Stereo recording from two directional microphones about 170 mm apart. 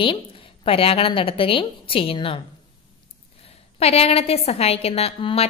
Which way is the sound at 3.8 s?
35° left (ahead or behind).